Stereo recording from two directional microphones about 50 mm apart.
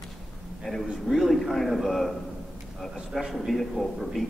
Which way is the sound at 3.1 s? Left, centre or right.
Centre.